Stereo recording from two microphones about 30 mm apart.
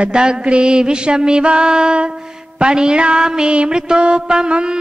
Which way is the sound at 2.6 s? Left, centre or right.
Right.